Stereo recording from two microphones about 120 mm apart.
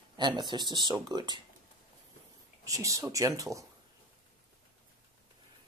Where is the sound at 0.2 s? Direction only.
40° right (ahead or behind).